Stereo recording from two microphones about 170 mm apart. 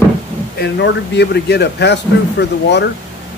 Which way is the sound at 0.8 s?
85° left.